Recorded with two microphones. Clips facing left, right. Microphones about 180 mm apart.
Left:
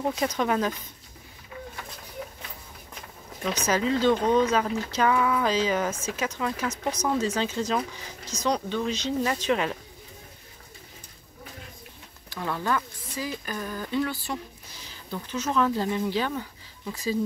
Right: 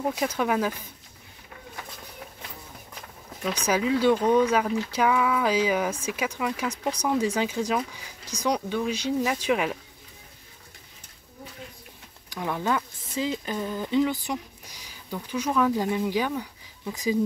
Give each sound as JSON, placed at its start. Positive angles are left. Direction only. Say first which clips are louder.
{"t": 0.0, "sound": "speech", "louder": "even", "side_deg": -5}
{"t": 3.4, "sound": "speech", "louder": "even", "side_deg": -10}
{"t": 12.3, "sound": "speech", "louder": "right 1 dB", "side_deg": -15}